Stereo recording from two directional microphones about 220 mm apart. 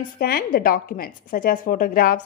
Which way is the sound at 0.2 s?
45° left (ahead or behind).